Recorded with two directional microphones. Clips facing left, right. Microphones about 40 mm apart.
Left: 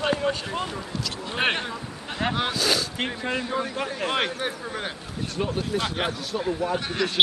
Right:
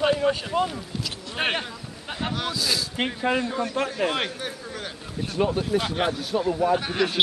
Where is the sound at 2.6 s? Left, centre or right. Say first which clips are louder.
Left 2 dB; left.